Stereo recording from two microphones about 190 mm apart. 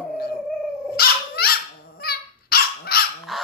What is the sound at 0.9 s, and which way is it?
Dog, 55° left (ahead or behind).